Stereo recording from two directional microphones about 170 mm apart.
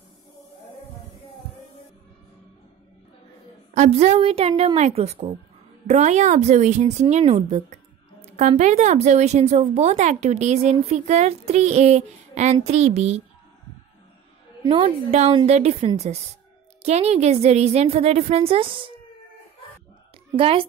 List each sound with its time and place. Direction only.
3.7 s a woman's voice: 40° right (ahead or behind)
14.6 s speech: 30° right (ahead or behind)
20.3 s speech: 35° right (ahead or behind)